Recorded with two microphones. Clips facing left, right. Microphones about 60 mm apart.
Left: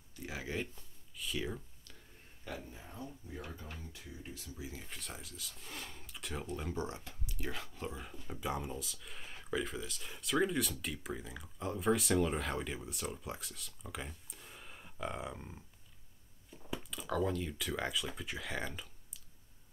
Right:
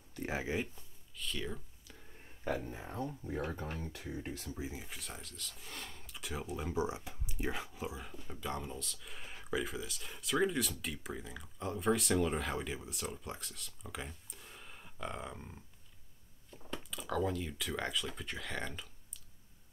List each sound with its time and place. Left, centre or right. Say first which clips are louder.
0.1 s a sound: right 6 dB; right
0.4 s speech: even; centre
1.1 s speech: left 1 dB; centre
2.4 s speech: right 8 dB; right
3.8 s speech: right 7 dB; right
4.5 s speech: right 4 dB; right
4.7 s speech: right 1 dB; centre
8.4 s speech: left 2 dB; centre